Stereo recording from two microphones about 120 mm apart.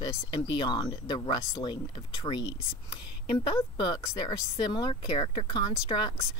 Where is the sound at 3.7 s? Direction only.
40° left (ahead or behind).